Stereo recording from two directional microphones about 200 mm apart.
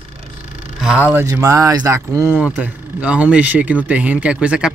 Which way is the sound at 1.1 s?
15° right (ahead or behind).